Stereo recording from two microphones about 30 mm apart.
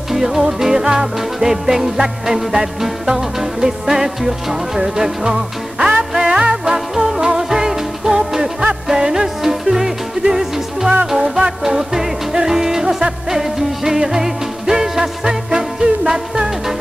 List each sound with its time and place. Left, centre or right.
0.1 s music: centre